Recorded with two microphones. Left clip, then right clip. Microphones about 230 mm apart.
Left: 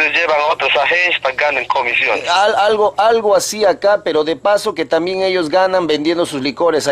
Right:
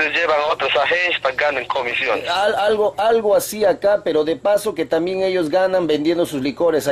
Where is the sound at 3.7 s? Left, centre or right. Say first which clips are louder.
Left 3 dB; right.